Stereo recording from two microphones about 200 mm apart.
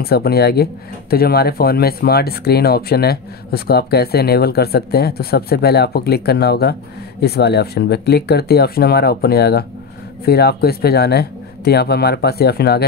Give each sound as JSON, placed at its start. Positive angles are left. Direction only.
{"t": 0.0, "sound": "speech", "side_deg": 50}